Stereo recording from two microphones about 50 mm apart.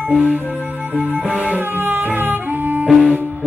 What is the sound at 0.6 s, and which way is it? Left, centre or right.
Music, right.